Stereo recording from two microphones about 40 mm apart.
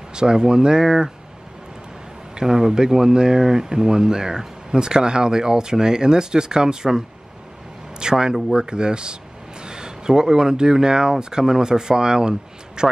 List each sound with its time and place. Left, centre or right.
0.1 s speech: centre
2.3 s speech: centre
8.0 s speech: centre